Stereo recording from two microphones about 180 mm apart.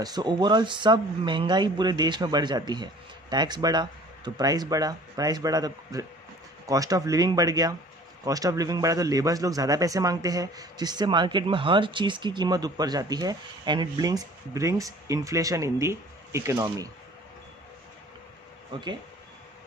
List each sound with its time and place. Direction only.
0.0 s speech: 25° right (ahead or behind)